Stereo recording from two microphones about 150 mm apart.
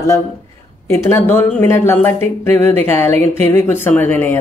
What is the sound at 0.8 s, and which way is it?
Speech, 15° left (ahead or behind).